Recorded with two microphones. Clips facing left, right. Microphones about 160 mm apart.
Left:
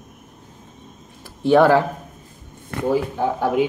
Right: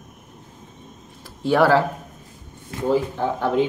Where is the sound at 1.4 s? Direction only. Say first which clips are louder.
Left 3 dB; 20° left (ahead or behind).